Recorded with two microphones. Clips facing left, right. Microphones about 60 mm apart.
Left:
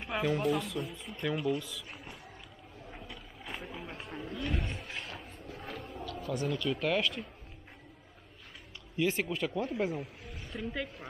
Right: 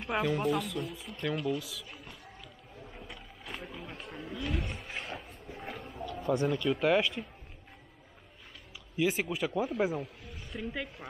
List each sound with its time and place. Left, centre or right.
0.1 s speech: centre
3.0 s speech: centre
5.5 s a man's voice: centre
5.8 s a man's voice: centre
8.9 s a man's voice: centre